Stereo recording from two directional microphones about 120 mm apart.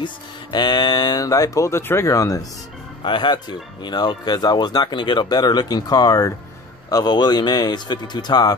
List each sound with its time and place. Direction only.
0.0 s speech: 40° left (ahead or behind)
3.0 s speech: 40° left (ahead or behind)